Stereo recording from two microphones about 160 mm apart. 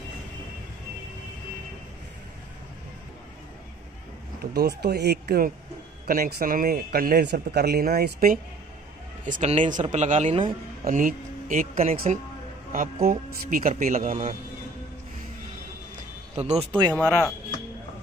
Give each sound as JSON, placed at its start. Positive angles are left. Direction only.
{"t": 4.4, "sound": "speech", "side_deg": -75}
{"t": 6.0, "sound": "a man's voice", "side_deg": -65}
{"t": 9.2, "sound": "speech", "side_deg": -50}
{"t": 10.8, "sound": "speech", "side_deg": -55}
{"t": 16.3, "sound": "speech", "side_deg": -45}